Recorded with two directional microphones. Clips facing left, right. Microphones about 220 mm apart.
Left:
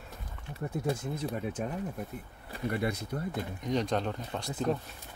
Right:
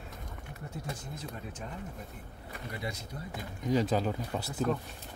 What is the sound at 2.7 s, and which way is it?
Speech, 60° left (ahead or behind).